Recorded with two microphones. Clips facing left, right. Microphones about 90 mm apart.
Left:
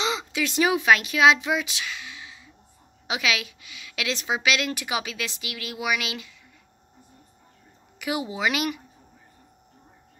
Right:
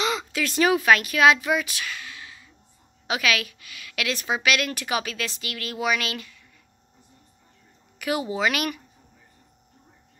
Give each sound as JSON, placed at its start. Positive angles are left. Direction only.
{"t": 0.0, "sound": "a woman's voice", "side_deg": 20}
{"t": 8.0, "sound": "a woman's voice", "side_deg": 15}